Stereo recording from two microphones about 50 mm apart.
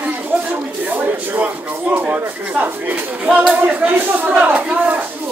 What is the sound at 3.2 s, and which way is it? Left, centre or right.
Speech, right.